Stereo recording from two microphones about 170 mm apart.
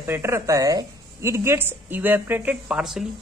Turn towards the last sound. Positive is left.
turn(degrees=0)  # may be behind; listen again after turning